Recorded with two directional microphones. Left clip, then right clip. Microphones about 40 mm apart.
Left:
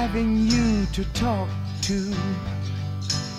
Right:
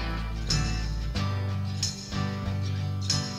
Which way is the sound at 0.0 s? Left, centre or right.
Right.